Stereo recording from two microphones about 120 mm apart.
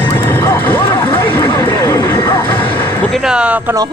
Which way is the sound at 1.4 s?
35° left (ahead or behind).